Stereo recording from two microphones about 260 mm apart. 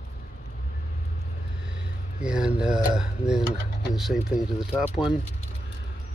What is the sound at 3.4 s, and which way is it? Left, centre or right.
Speech, left.